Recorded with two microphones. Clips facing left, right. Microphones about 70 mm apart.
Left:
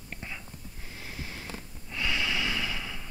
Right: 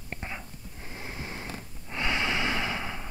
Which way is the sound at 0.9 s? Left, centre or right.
Right.